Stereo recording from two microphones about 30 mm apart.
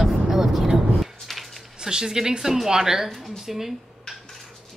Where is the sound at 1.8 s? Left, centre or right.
Right.